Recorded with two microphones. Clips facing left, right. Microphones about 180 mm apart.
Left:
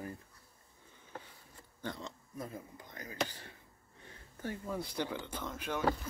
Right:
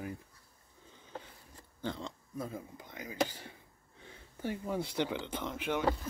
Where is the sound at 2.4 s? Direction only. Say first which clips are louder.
Right 4 dB; 10° right (ahead or behind).